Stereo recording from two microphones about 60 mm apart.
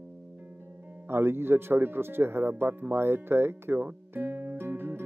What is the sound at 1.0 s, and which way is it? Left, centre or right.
Music, right.